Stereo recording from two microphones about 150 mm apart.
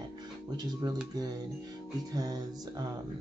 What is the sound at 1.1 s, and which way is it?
Speech, 25° right (ahead or behind).